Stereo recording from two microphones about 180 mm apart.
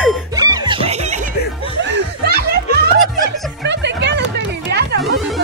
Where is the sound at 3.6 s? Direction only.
75° right (ahead or behind).